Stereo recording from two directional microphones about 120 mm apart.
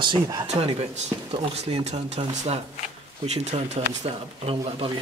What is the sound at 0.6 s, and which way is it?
Speech, 65° right (ahead or behind).